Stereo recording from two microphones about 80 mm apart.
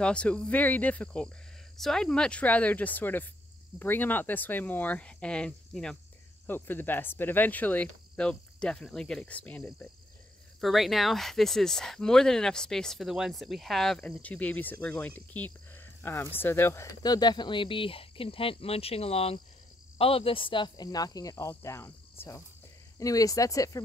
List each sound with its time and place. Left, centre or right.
0.0 s speech: centre
1.8 s speech: centre
6.4 s speech: left
10.6 s speech: centre
14.0 s speech: centre; by 16.9 s left
17.0 s speech: left
20.3 s speech: left
22.9 s speech: left